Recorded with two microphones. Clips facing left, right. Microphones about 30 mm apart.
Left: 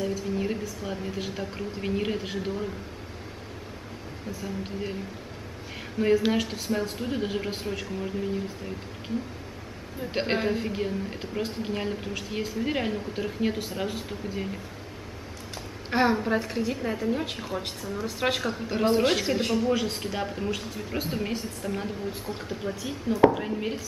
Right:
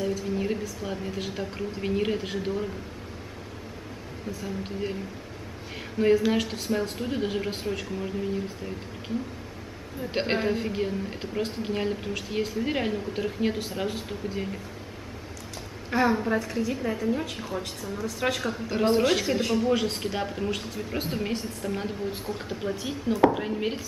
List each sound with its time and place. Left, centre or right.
0.0 s a woman's voice: centre
4.4 s a woman's voice: centre
5.9 s a woman's voice: centre
10.1 s a woman's voice: centre
15.9 s a woman's voice: left
16.7 s a woman's voice: centre